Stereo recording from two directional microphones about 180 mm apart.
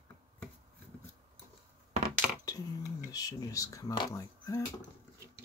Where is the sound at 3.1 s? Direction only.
20° left (ahead or behind).